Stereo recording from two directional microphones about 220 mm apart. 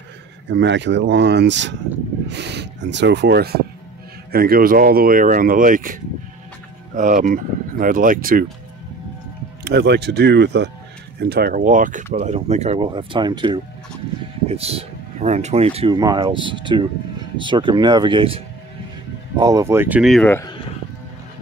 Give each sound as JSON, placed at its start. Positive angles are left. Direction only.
{"t": 0.5, "sound": "speech", "side_deg": -55}
{"t": 7.0, "sound": "speech", "side_deg": -35}
{"t": 9.7, "sound": "speech", "side_deg": -50}